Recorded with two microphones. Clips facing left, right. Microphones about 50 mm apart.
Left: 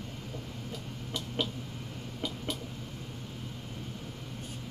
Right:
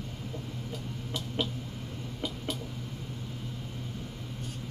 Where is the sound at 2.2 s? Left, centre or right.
Centre.